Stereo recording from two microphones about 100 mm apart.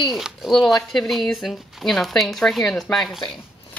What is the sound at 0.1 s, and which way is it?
Speech, 5° right (ahead or behind).